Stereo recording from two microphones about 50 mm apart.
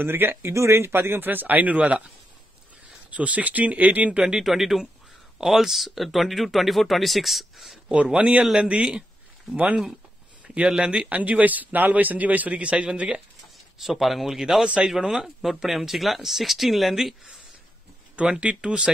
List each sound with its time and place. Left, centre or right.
0.0 s speech: right
0.5 s speech: right
1.2 s speech: right
3.1 s speech: right
4.4 s speech: centre
7.9 s speech: right
13.7 s a man's voice: centre
15.2 s speech: centre
18.4 s speech: right